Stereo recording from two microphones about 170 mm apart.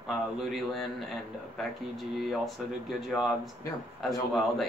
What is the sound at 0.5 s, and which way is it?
Speech, centre (ahead or behind).